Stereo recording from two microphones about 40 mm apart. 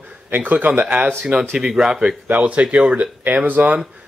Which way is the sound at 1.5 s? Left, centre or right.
Centre.